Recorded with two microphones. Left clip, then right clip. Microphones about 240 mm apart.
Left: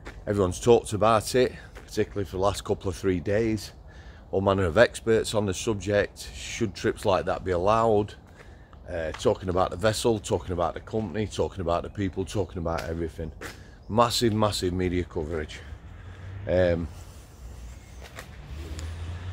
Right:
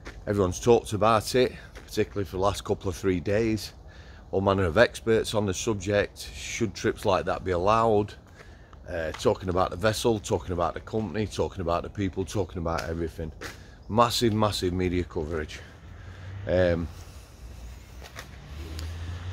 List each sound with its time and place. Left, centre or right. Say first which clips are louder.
0.0 s speech: even; centre